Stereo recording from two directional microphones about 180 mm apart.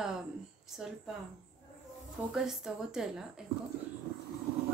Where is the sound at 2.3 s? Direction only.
Centre (ahead or behind).